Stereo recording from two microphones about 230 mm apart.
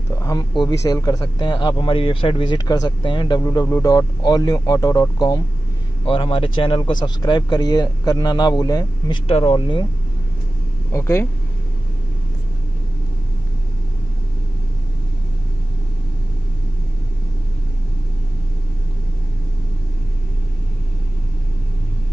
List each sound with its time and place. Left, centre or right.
0.2 s speech: centre
10.9 s speech: centre